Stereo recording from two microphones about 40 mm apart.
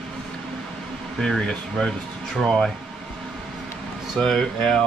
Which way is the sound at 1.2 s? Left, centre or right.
Centre.